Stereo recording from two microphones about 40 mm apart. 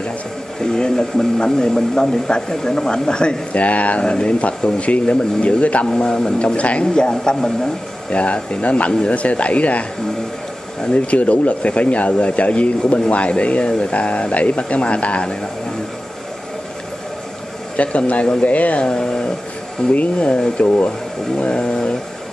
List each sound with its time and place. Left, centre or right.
0.6 s speech: left
3.5 s speech: left
4.0 s speech: left
5.9 s speech: centre
6.5 s speech: left
7.0 s speech: centre
8.1 s speech: left
17.7 s speech: left
18.2 s speech: left
18.5 s speech: left
18.9 s speech: left
19.9 s speech: left
20.6 s speech: left
21.4 s speech: left